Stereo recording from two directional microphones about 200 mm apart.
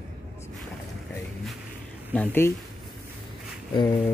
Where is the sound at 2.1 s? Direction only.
10° left (ahead or behind).